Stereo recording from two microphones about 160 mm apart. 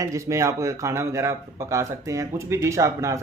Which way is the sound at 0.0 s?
20° right (ahead or behind).